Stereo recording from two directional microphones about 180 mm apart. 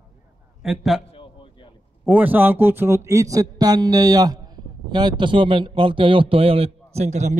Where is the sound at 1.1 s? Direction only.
30° left (ahead or behind).